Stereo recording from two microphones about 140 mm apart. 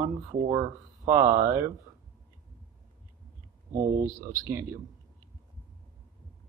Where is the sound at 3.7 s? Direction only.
70° right (ahead or behind).